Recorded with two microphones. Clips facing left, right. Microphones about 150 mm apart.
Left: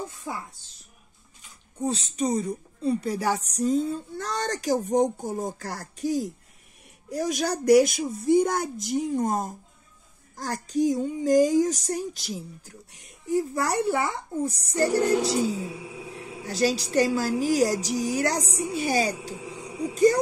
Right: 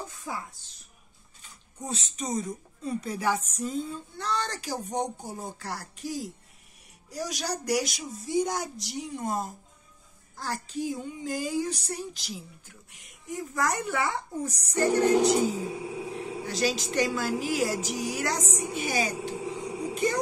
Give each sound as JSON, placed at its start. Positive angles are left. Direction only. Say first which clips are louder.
{"t": 1.8, "sound": "a child's voice", "louder": "left 8 dB", "side_deg": 30}
{"t": 16.4, "sound": "a child's voice", "louder": "left 5 dB", "side_deg": 40}